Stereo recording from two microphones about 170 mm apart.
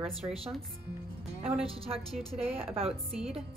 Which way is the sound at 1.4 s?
35° right (ahead or behind).